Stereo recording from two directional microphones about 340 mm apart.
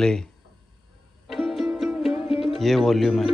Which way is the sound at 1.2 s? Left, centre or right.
Centre.